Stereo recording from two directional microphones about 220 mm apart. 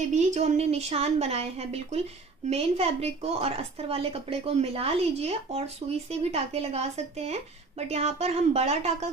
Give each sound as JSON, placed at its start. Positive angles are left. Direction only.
{"t": 0.1, "sound": "a woman's voice", "side_deg": -30}